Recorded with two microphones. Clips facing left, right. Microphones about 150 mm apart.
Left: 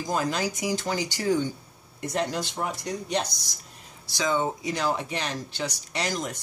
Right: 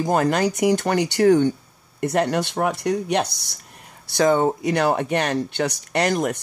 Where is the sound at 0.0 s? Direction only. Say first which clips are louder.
Right 8 dB; 60° right (ahead or behind).